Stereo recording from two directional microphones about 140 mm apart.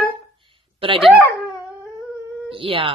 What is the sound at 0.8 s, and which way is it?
Speech, 40° right (ahead or behind).